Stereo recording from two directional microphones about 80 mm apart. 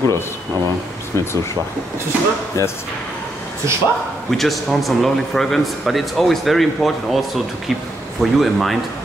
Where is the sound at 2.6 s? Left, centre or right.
Left.